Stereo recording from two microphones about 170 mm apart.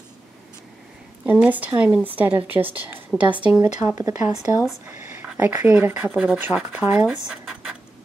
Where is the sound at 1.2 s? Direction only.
10° right (ahead or behind).